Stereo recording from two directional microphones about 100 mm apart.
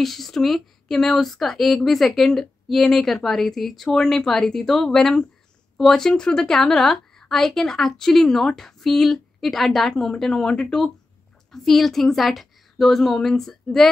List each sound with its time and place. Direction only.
0.0 s a woman's voice: centre (ahead or behind)